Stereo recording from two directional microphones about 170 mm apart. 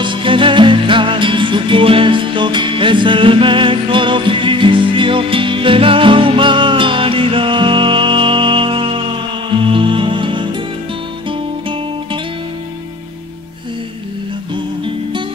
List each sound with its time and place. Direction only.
0.0 s music: 30° right (ahead or behind)
14.5 s music: 30° right (ahead or behind)